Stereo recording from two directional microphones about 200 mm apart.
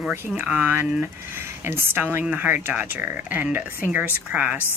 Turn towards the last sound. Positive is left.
turn(degrees=-10)  # may be behind; listen again after turning